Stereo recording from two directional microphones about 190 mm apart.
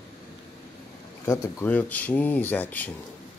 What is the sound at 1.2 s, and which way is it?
Speech, 15° left (ahead or behind).